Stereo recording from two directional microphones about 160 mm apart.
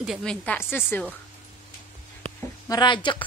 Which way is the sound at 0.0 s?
Centre (ahead or behind).